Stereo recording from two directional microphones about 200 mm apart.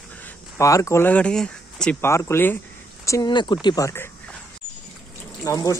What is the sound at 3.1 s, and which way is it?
Speech, 20° left (ahead or behind).